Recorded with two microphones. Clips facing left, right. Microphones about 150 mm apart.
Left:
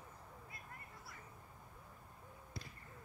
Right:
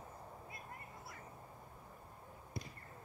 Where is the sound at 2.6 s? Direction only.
20° right (ahead or behind).